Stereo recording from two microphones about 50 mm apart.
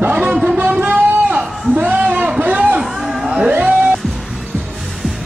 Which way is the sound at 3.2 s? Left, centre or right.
Right.